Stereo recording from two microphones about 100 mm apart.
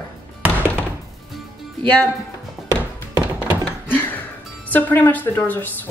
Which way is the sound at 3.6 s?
20° left (ahead or behind).